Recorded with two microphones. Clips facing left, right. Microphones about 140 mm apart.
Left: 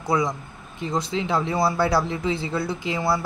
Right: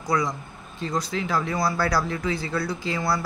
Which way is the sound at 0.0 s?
25° left (ahead or behind).